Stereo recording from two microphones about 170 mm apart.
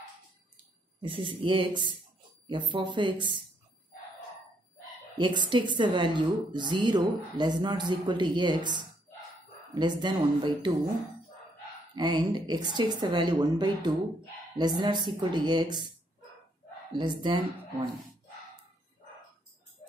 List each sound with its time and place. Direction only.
1.0 s a woman's voice: 30° right (ahead or behind)
5.1 s a woman's voice: 25° right (ahead or behind)
11.9 s a woman's voice: 25° right (ahead or behind)
16.9 s a woman's voice: 25° right (ahead or behind)